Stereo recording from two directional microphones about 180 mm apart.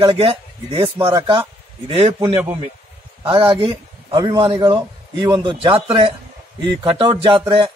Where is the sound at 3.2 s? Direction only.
30° right (ahead or behind).